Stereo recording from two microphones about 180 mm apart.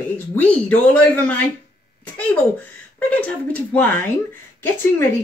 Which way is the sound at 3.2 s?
10° left (ahead or behind).